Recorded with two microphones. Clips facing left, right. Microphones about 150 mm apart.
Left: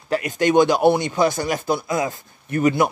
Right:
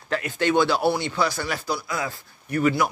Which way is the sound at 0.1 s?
15° left (ahead or behind).